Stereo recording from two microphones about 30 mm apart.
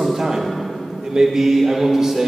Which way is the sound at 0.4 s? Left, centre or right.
Centre.